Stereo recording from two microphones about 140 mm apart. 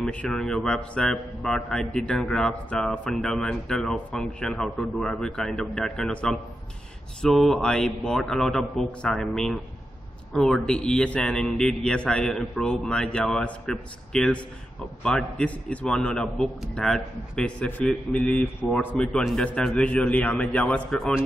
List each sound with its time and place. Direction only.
0.0 s a man's voice: 5° left (ahead or behind)